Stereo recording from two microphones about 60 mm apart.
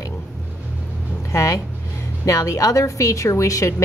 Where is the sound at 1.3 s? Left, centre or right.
Left.